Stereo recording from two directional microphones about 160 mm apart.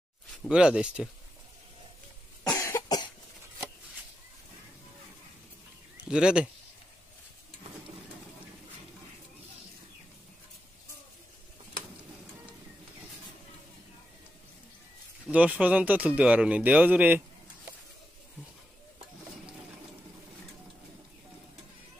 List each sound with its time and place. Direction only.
0.5 s speech: 5° right (ahead or behind)
2.4 s cough: 20° left (ahead or behind)
5.9 s speech: 5° right (ahead or behind)
15.2 s speech: 10° right (ahead or behind)